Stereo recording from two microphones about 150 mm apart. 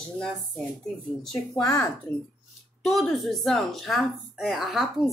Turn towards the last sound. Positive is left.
turn(degrees=0)  # may be behind; listen again after turning